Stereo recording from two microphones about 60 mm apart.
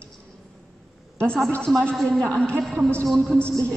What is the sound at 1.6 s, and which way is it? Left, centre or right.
Speech, centre.